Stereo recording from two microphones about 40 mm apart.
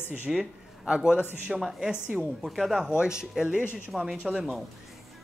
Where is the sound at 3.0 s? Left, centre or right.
Centre.